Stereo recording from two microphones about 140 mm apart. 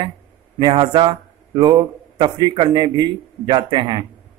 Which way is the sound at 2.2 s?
35° right (ahead or behind).